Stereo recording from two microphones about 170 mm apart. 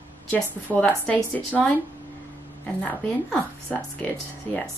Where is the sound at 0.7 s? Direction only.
5° left (ahead or behind).